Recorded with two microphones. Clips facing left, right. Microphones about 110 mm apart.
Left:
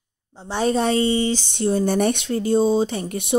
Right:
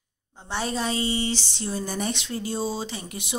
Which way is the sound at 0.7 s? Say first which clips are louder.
Left 8 dB; 60° left (ahead or behind).